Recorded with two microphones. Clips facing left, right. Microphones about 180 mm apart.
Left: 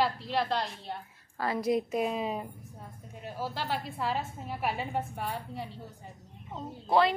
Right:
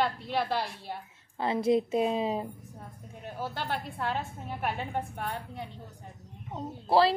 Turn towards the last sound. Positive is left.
turn(degrees=-30)  # may be behind; listen again after turning